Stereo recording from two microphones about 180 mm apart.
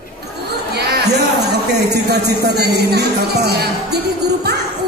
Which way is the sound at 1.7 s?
65° right (ahead or behind).